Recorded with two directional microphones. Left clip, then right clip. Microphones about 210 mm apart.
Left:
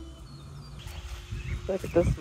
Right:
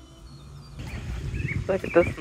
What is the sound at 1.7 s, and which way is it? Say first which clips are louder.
Speech: right 5 dB; centre (ahead or behind).